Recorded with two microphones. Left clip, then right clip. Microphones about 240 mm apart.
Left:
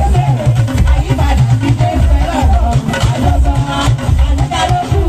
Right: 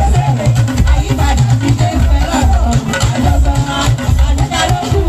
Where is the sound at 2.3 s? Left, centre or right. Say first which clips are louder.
Even; right.